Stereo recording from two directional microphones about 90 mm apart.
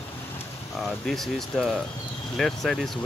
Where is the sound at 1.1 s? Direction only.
5° left (ahead or behind).